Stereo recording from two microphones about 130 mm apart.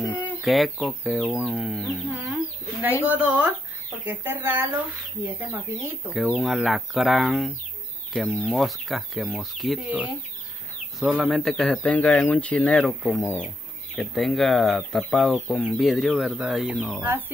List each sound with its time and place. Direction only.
0.0 s bird: 10° right (ahead or behind)
0.4 s speech: centre (ahead or behind)
2.0 s chicken: 5° right (ahead or behind)
3.1 s speech: 10° right (ahead or behind)
6.1 s speech: centre (ahead or behind)
9.8 s speech: 10° right (ahead or behind)